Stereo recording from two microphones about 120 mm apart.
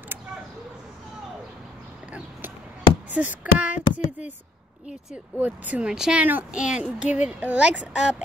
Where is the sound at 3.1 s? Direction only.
10° right (ahead or behind).